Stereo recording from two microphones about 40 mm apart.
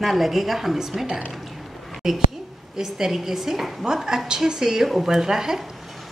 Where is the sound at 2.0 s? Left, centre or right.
Centre.